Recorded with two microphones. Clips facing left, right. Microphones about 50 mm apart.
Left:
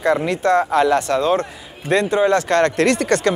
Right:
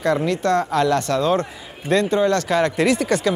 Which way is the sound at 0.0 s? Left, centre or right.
Centre.